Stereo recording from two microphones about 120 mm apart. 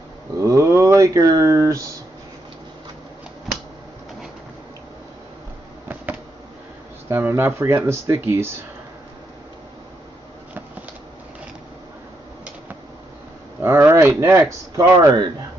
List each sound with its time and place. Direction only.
0.4 s a sound: 25° right (ahead or behind)
7.1 s speech: 20° right (ahead or behind)
13.6 s speech: 20° right (ahead or behind)